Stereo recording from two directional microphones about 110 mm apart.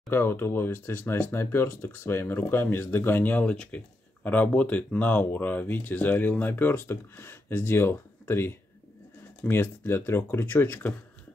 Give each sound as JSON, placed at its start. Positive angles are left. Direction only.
{"t": 0.1, "sound": "speech", "side_deg": 20}